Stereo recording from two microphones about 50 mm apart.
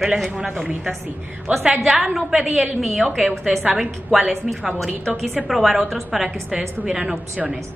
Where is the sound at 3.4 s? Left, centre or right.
Centre.